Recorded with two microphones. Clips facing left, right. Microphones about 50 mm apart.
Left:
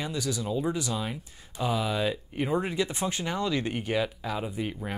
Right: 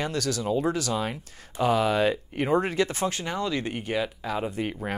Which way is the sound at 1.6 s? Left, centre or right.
Right.